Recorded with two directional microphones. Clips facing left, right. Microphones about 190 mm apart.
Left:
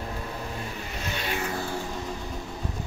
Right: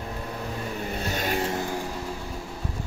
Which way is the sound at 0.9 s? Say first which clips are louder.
Right 3 dB; 40° right (ahead or behind).